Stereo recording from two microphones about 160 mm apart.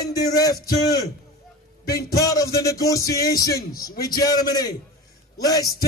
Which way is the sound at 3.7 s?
65° left (ahead or behind).